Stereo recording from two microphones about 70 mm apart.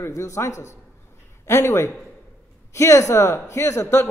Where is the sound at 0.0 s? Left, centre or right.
Left.